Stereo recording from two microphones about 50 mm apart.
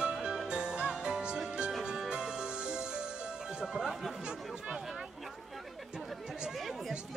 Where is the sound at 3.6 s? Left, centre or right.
Centre.